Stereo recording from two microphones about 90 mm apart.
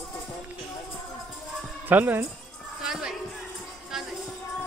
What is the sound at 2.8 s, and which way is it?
Music, 5° right (ahead or behind).